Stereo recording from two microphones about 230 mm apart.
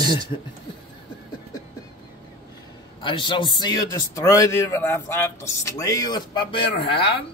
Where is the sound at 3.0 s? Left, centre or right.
Left.